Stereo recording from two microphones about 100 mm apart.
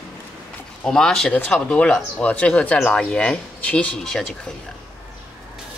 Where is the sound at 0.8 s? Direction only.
5° left (ahead or behind).